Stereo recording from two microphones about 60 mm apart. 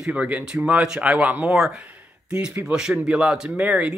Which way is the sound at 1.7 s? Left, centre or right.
Right.